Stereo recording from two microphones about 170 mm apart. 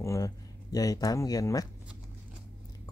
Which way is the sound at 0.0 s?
20° left (ahead or behind).